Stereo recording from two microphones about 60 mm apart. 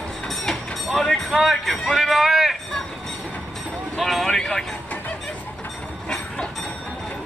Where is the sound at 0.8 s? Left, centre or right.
Centre.